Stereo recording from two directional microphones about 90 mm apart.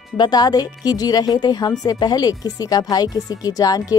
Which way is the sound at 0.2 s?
45° left (ahead or behind).